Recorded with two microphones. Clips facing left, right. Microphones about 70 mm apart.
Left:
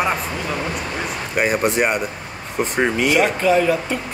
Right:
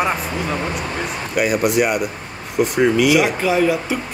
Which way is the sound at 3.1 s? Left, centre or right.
Centre.